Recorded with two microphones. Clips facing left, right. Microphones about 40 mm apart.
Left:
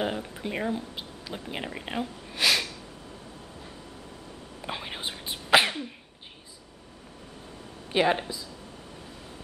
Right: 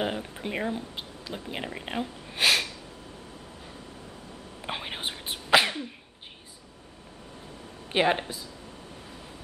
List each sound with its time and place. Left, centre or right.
0.0 s speech: centre
2.3 s a sound: right
4.6 s whispering: centre
5.5 s cough: centre
7.9 s speech: centre